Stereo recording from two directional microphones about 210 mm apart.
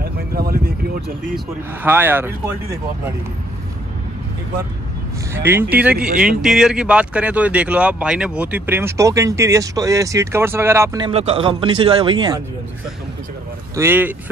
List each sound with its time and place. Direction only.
0.0 s a sound: 45° right (ahead or behind)
1.3 s speech: 10° right (ahead or behind)
5.3 s speech: 10° right (ahead or behind)
13.7 s speech: 10° right (ahead or behind)